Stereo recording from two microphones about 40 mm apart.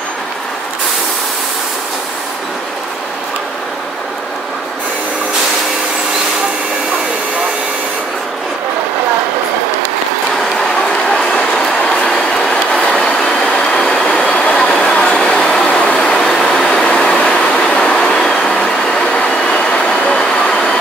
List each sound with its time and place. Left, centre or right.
11.1 s vehicle: centre
14.2 s vehicle: left
16.0 s a sound: centre
17.2 s train: centre
18.9 s vehicle: centre
19.1 s train: left